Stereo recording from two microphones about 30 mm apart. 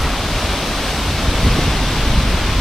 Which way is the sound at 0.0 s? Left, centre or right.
Centre.